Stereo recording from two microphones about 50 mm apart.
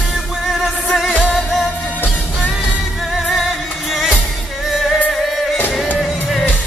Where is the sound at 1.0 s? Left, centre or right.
Left.